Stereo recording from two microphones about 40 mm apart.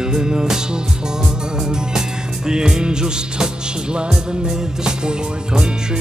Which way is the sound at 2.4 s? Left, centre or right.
Centre.